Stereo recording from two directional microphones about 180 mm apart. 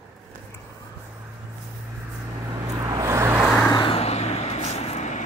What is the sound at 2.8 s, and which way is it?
Vehicle, 20° right (ahead or behind).